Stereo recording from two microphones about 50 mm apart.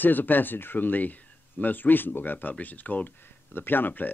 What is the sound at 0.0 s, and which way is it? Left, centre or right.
Speech, left.